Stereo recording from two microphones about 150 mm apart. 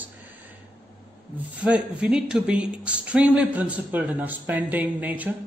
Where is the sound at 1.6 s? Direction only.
5° right (ahead or behind).